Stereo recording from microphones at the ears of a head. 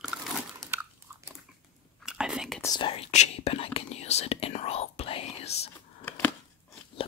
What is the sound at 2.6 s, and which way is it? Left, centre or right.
Whispering, left.